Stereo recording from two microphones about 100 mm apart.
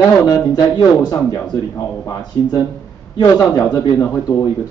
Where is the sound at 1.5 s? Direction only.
35° left (ahead or behind).